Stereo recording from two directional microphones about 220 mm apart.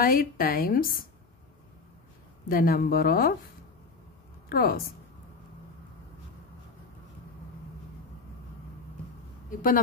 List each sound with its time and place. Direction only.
0.0 s a woman's voice: 40° left (ahead or behind)
2.4 s a woman's voice: 40° left (ahead or behind)
4.5 s a woman's voice: 45° left (ahead or behind)